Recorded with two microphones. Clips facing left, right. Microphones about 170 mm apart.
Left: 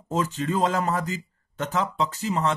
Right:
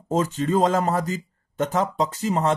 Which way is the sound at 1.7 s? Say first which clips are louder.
Right 1 dB; 40° right (ahead or behind).